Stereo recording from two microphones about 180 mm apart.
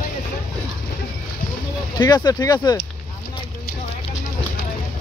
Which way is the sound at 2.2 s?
20° left (ahead or behind).